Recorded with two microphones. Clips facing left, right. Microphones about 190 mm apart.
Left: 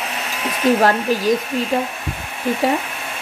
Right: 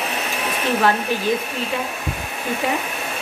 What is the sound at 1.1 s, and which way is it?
Speech, 40° left (ahead or behind).